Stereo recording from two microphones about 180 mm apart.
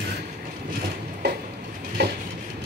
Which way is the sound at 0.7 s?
55° right (ahead or behind).